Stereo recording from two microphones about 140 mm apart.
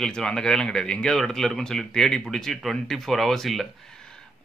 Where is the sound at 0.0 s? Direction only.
5° left (ahead or behind).